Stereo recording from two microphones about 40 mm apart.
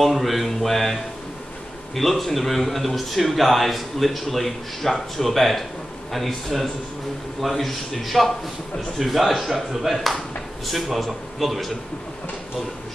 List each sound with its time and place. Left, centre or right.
0.0 s a man's voice: centre
2.0 s a man's voice: centre